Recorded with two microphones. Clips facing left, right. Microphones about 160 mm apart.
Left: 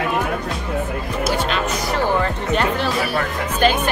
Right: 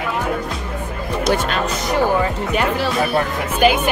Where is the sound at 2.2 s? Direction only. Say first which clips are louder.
Right 1 dB; 10° right (ahead or behind).